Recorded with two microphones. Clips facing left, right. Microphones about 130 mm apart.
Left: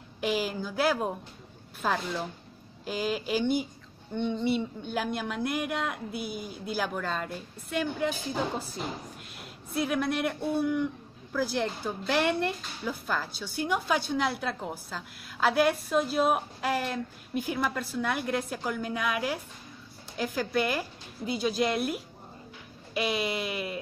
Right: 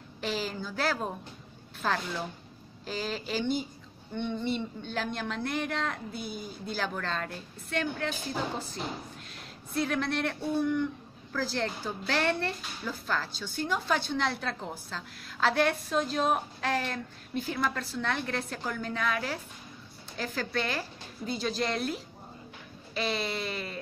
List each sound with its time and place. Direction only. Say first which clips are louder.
0.2 s a woman's voice: left 4 dB; 10° left (ahead or behind)